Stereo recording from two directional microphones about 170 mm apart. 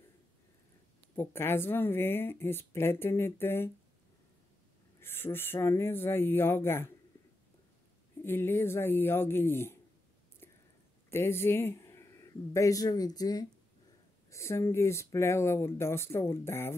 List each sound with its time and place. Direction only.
1.1 s speech: 15° left (ahead or behind)
5.0 s speech: 15° left (ahead or behind)
8.2 s speech: 15° left (ahead or behind)
11.1 s speech: 15° left (ahead or behind)